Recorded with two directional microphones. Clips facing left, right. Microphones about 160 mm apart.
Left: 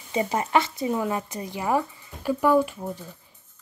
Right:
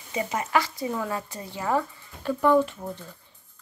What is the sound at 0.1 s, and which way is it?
Speech, 30° left (ahead or behind).